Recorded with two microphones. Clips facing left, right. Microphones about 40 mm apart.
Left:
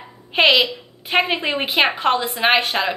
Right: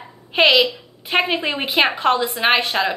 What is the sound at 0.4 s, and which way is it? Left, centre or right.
A woman's voice, centre.